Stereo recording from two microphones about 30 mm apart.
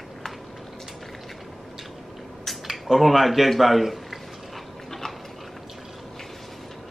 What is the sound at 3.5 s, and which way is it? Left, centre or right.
Speech, centre.